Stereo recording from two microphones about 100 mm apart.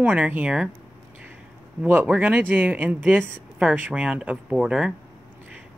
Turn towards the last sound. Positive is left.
turn(degrees=-10)  # may be behind; listen again after turning